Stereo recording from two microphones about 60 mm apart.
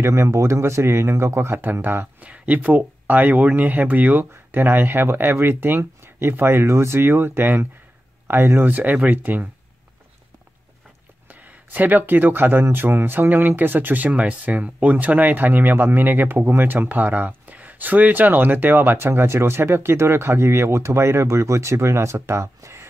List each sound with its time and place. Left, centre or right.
0.0 s speech: right
1.6 s speech: right
8.6 s speech: right
11.2 s speech: right